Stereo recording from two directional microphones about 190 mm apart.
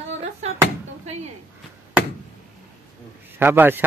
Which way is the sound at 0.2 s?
35° right (ahead or behind).